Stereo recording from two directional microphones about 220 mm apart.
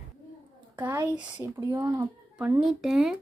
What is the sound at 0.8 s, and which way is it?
A child's voice, 10° right (ahead or behind).